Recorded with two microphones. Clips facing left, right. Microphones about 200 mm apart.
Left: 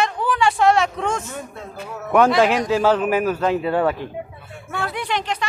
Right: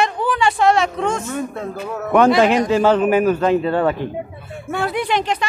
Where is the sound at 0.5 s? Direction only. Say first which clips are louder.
Right 2 dB; centre (ahead or behind).